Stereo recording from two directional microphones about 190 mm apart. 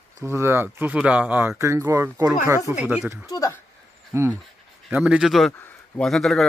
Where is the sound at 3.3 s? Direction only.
15° left (ahead or behind).